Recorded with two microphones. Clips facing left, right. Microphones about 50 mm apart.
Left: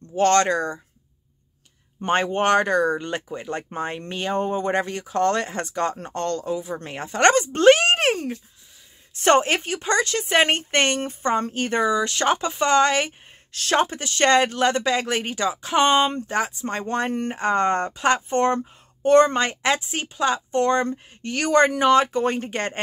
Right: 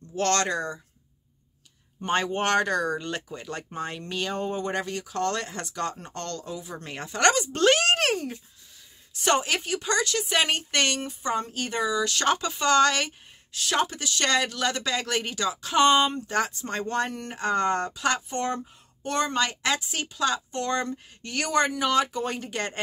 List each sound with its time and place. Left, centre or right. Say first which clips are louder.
0.1 s speech: left 7 dB; left
2.0 s speech: left 4 dB; left
2.4 s speech: left 7 dB; left
9.1 s speech: left 6 dB; left
13.5 s speech: left 6 dB; left
13.7 s speech: left 6 dB; left